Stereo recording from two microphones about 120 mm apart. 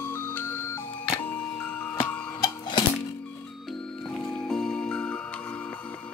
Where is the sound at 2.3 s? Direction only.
40° left (ahead or behind).